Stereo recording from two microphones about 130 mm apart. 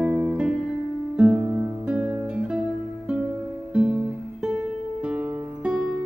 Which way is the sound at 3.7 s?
5° right (ahead or behind).